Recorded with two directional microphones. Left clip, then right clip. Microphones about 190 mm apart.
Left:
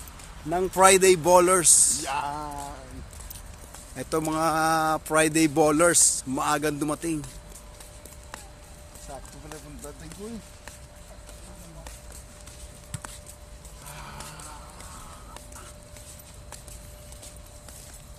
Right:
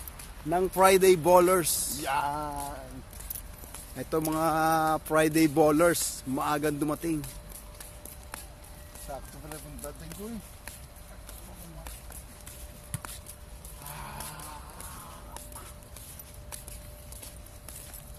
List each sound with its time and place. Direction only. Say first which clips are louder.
0.5 s speech: left 3 dB; centre (ahead or behind)
2.0 s a sound: even; 55° right (ahead or behind)
3.9 s speech: left 2 dB; centre (ahead or behind)